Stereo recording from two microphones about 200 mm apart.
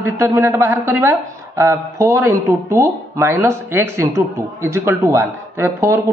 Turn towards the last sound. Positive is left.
turn(degrees=-10)  # may be behind; listen again after turning